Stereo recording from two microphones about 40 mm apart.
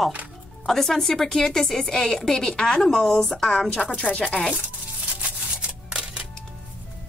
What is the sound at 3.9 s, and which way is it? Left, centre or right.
Speech, left.